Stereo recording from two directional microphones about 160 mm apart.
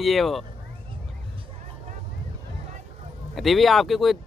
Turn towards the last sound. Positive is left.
turn(degrees=0)  # may be behind; listen again after turning